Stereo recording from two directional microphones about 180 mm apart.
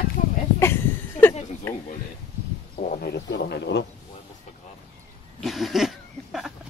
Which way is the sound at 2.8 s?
60° left (ahead or behind).